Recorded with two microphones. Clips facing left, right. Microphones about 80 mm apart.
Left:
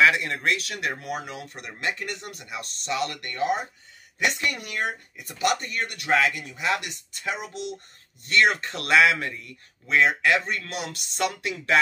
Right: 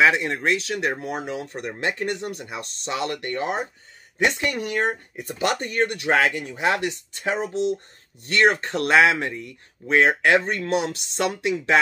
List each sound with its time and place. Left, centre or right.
0.0 s speech: right